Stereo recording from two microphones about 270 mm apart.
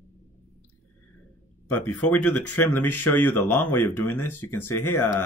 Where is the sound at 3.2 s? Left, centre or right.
Centre.